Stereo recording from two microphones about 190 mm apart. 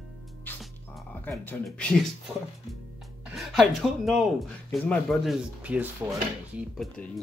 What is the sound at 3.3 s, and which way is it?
Speech, centre (ahead or behind).